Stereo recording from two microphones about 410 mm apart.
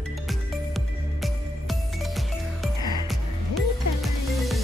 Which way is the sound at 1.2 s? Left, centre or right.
Centre.